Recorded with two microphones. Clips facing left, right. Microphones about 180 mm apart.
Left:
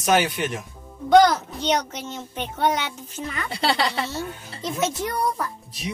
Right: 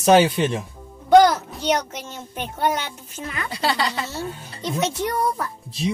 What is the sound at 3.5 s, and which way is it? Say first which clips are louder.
Speech: even; 25° left (ahead or behind).